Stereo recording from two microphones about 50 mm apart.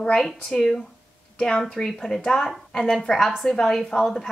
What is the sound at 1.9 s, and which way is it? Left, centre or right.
A woman's voice, centre.